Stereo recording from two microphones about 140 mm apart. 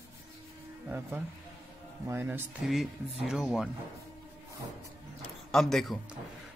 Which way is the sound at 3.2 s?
5° right (ahead or behind).